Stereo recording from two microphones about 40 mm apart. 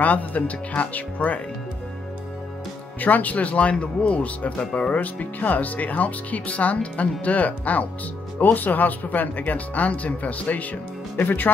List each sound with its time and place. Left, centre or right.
0.0 s speech: left
3.0 s speech: left
4.6 s speech: left
4.9 s speech: left
11.2 s speech: left